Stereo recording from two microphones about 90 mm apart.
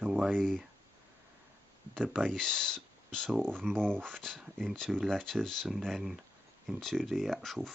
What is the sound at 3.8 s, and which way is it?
Speech, 10° left (ahead or behind).